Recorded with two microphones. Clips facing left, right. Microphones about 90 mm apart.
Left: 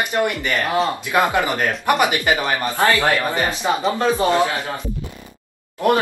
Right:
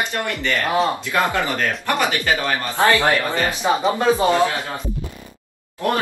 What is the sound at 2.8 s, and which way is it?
Speech, 20° right (ahead or behind).